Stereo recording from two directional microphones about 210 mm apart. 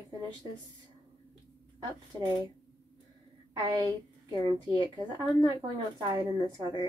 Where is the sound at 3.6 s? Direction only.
20° right (ahead or behind).